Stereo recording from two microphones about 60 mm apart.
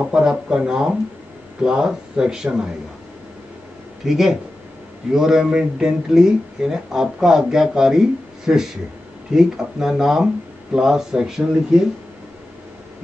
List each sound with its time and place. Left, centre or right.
0.0 s speech: centre
4.0 s speech: centre